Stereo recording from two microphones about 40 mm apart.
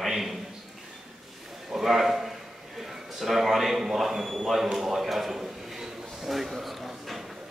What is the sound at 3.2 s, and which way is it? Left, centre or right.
A man's voice, centre.